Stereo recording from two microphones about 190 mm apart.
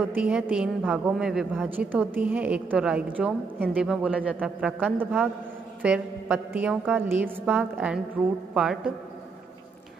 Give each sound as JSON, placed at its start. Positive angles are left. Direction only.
{"t": 0.0, "sound": "a man's voice", "side_deg": -5}